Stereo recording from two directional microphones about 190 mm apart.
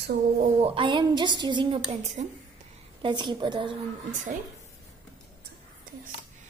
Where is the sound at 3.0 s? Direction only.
25° right (ahead or behind).